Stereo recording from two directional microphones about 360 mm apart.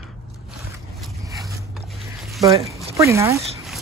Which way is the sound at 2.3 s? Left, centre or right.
Centre.